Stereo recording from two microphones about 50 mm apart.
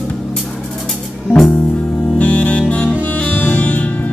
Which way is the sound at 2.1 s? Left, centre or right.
Left.